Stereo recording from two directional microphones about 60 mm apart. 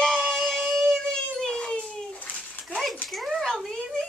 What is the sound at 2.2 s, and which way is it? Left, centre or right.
Dog, left.